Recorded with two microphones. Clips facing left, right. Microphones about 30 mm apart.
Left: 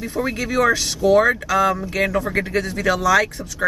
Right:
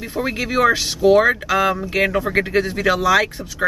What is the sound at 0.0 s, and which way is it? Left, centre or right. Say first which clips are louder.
Speech: even; right.